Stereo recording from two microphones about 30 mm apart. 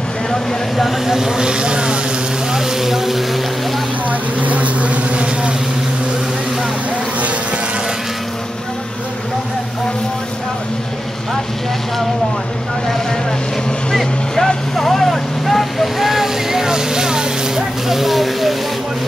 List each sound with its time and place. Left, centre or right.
0.3 s speech: centre
1.0 s speech: centre; by 2.0 s right
2.5 s speech: centre
4.1 s vehicle: right
14.3 s vehicle: centre
14.8 s vehicle: centre; by 17.6 s right
17.8 s a sound: centre